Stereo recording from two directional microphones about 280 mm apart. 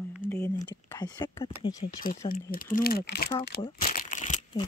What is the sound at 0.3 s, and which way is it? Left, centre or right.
Speech, centre.